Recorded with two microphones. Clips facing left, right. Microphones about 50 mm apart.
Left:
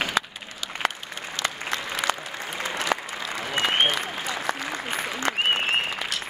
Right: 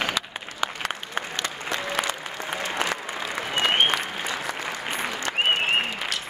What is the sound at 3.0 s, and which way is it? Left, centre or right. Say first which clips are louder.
Applause: right 1 dB; right.